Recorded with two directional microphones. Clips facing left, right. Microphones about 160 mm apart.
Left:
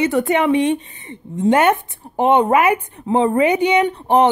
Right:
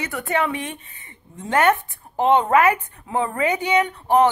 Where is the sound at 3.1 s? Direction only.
25° left (ahead or behind).